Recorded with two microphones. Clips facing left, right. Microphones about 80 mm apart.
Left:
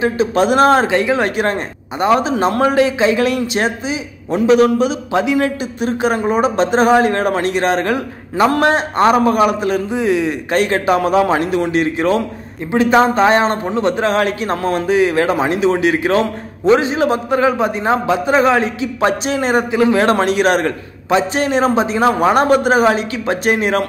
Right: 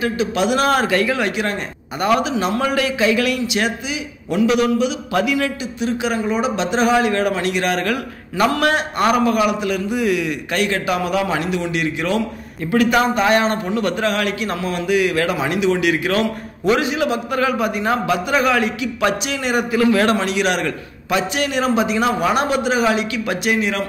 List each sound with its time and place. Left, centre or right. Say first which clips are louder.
0.0 s a man's voice: left 4 dB; left
1.2 s a man's voice: left 4 dB; left
2.3 s a man's voice: left 6 dB; left
20.2 s a man's voice: left 5 dB; left